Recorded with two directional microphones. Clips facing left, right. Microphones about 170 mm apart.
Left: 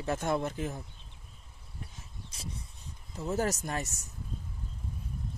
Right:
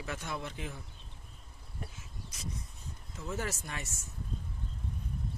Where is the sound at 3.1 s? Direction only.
35° left (ahead or behind).